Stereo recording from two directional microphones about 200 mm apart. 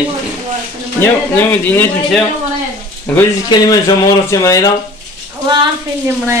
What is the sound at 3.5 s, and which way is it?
Speech, 15° left (ahead or behind).